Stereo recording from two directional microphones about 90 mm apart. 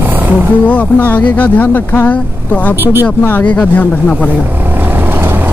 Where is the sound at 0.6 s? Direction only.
20° left (ahead or behind).